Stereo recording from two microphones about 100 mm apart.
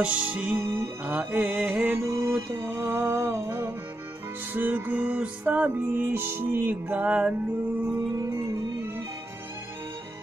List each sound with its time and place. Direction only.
0.0 s music: 10° right (ahead or behind)
8.2 s music: 30° right (ahead or behind)